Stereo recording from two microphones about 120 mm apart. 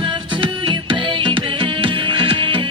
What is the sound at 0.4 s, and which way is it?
Music, 40° right (ahead or behind).